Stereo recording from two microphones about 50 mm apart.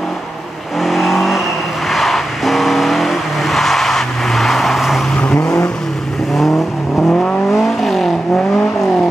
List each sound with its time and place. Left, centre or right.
0.7 s vehicle: centre
5.1 s vehicle: centre
7.0 s vehicle: centre
7.5 s vehicle: centre